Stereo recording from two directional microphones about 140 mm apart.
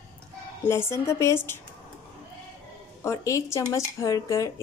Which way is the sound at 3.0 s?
20° left (ahead or behind).